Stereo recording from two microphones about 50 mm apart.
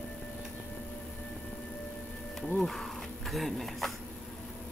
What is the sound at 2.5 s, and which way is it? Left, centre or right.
Speech, centre.